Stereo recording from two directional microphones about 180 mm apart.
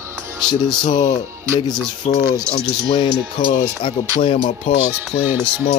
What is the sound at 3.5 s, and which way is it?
Speech, 45° left (ahead or behind).